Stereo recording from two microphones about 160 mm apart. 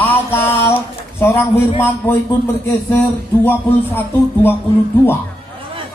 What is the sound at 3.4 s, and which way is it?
Speech, 15° left (ahead or behind).